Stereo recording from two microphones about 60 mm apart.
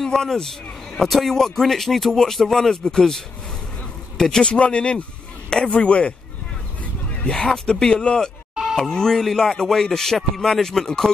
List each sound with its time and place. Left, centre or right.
0.0 s a man's voice: centre
7.2 s a man's voice: centre